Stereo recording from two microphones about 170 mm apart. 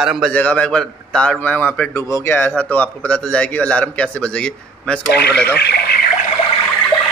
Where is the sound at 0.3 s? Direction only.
5° left (ahead or behind).